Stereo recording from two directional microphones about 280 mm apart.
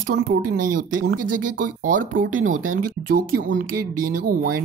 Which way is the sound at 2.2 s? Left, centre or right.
Right.